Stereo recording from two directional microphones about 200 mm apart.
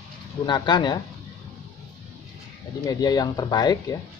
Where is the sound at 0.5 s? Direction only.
20° left (ahead or behind).